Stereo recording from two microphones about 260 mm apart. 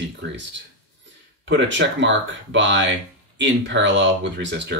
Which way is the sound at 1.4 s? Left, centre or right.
Right.